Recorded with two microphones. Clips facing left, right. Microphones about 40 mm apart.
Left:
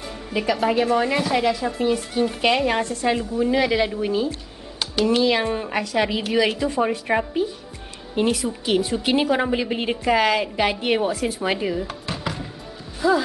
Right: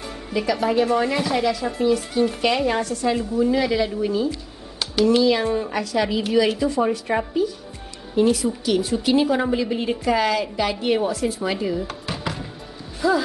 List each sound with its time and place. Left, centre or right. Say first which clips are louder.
0.3 s a woman's voice: even; centre
5.2 s a woman's voice: right 1 dB; left
12.1 s music: even; centre
13.0 s speech: left 1 dB; centre